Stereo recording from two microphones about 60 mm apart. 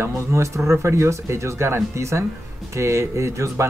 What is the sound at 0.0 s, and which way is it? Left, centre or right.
Speech, right.